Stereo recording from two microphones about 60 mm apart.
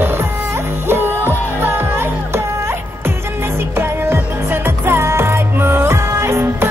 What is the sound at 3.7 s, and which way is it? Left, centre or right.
Music, right.